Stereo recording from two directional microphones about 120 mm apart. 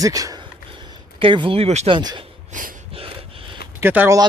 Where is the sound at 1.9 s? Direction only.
40° right (ahead or behind).